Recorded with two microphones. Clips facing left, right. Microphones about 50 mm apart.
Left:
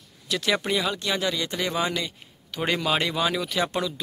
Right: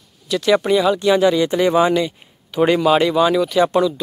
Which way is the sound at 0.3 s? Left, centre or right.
Centre.